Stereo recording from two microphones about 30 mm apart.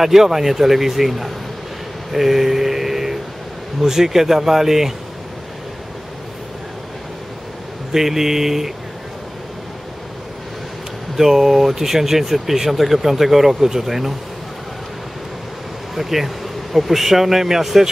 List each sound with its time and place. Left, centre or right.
0.0 s speech: centre
2.1 s mantra: centre
3.8 s speech: centre
7.9 s speech: centre
11.1 s speech: centre
15.9 s speech: centre